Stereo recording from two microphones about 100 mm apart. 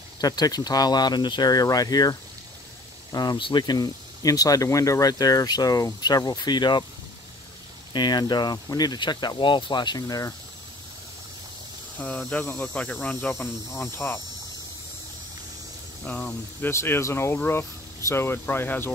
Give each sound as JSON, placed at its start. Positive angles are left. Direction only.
{"t": 0.2, "sound": "speech", "side_deg": 40}
{"t": 7.9, "sound": "speech", "side_deg": 45}
{"t": 12.0, "sound": "speech", "side_deg": 10}
{"t": 13.0, "sound": "speech", "side_deg": 20}
{"t": 16.1, "sound": "speech", "side_deg": 10}
{"t": 16.6, "sound": "speech", "side_deg": 25}